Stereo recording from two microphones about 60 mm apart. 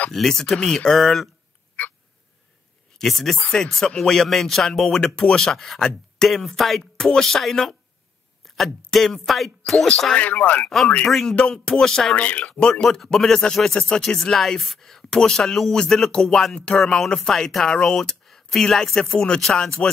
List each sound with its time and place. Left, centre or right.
0.1 s speech: centre
3.0 s speech: centre
3.3 s speech: centre
5.1 s speech: centre
10.1 s speech: left
10.6 s speech: centre
12.2 s speech: left
12.8 s speech: centre